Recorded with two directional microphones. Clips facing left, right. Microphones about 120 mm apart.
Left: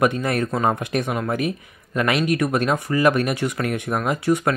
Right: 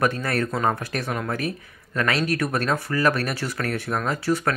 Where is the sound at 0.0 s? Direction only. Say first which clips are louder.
Left 3 dB; 20° left (ahead or behind).